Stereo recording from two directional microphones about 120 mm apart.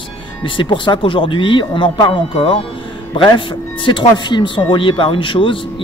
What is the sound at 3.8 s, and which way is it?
Speech, 40° left (ahead or behind).